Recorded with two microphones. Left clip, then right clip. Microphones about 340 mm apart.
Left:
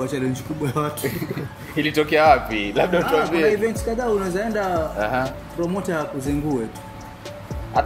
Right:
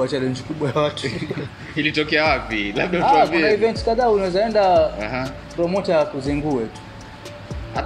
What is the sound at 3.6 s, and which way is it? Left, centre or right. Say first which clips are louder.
Speech: right 5 dB; centre.